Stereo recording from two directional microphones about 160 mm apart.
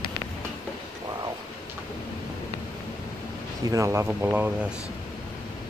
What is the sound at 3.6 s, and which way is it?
Speech, 20° right (ahead or behind).